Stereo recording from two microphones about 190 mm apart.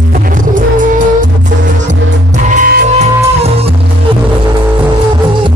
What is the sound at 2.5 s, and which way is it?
Music, 45° right (ahead or behind).